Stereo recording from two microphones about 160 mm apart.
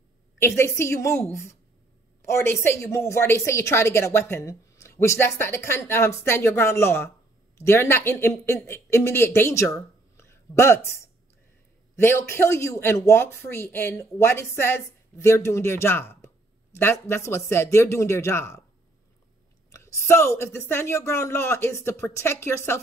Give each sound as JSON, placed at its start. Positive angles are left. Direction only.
{"t": 0.4, "sound": "a woman's voice", "side_deg": 15}
{"t": 2.2, "sound": "a woman's voice", "side_deg": 15}
{"t": 11.9, "sound": "a woman's voice", "side_deg": 15}
{"t": 19.7, "sound": "a woman's voice", "side_deg": 20}